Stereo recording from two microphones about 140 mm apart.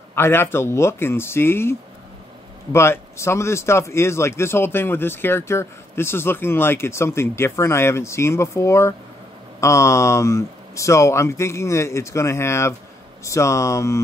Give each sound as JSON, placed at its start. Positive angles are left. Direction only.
{"t": 0.1, "sound": "speech", "side_deg": 15}